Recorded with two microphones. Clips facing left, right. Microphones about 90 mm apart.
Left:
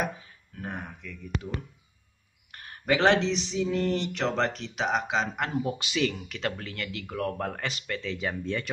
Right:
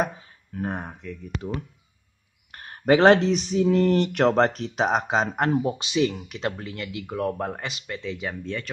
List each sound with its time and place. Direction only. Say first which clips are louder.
0.6 s speech: right 7 dB; 35° right (ahead or behind)
2.5 s speech: right 7 dB; 40° right (ahead or behind)
5.5 s speech: right 6 dB; 25° right (ahead or behind)
8.2 s speech: even; centre (ahead or behind)